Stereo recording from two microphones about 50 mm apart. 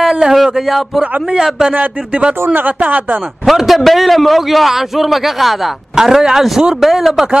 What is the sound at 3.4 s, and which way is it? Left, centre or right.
A man's voice, centre.